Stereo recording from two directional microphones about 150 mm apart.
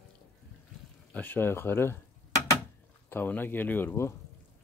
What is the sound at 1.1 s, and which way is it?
Speech, 10° left (ahead or behind).